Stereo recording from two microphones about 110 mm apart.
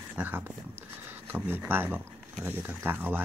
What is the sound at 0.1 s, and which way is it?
Speech, 15° right (ahead or behind).